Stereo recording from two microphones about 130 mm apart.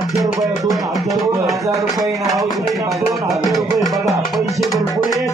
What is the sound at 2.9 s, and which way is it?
Music, centre (ahead or behind).